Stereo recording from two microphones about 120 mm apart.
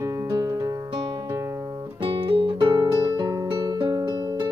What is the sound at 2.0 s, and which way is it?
Music, 45° right (ahead or behind).